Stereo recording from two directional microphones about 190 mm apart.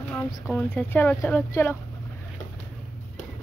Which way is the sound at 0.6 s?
10° left (ahead or behind).